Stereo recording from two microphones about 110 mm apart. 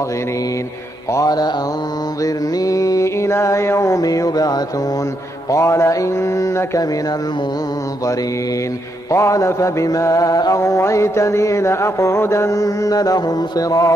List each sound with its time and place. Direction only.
1.1 s mantra: 35° left (ahead or behind)
9.1 s mantra: 25° left (ahead or behind)